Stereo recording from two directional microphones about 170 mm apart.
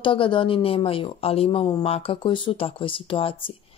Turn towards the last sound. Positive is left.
turn(degrees=30)  # may be behind; listen again after turning